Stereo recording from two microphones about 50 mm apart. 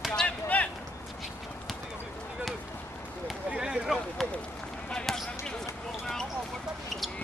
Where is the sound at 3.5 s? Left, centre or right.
Centre.